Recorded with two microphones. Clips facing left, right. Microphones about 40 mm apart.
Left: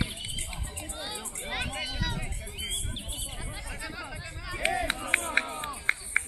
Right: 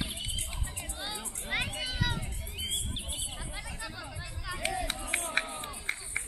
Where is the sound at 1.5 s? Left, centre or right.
Centre.